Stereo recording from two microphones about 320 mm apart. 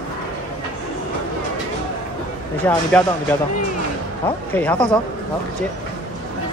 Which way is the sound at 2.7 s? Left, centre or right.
Centre.